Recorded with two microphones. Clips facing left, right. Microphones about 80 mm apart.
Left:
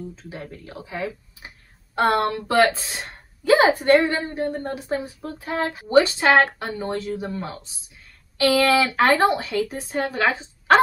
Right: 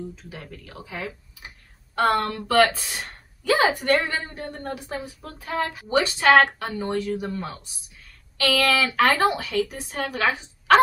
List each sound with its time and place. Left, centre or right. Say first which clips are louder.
0.1 s a woman's voice: left 4 dB; left